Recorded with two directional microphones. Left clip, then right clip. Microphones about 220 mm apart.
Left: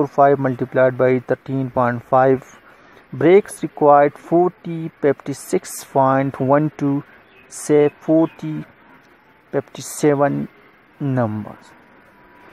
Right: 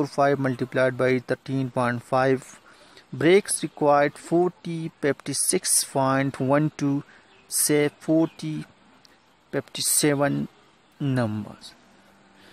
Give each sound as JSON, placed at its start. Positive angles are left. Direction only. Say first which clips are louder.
{"t": 0.0, "sound": "speech", "louder": "left 8 dB", "side_deg": -15}
{"t": 9.5, "sound": "speech", "louder": "left 3 dB", "side_deg": -15}